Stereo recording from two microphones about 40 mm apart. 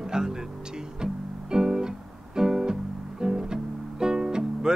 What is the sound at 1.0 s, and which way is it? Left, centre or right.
Music, centre.